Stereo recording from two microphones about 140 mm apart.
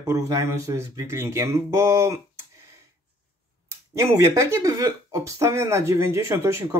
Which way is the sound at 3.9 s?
20° right (ahead or behind).